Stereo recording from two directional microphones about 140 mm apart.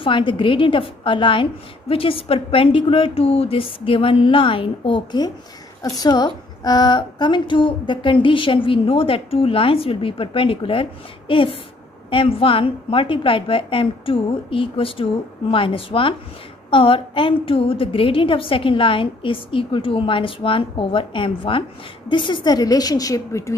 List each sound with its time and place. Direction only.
0.0 s a woman's voice: 35° left (ahead or behind)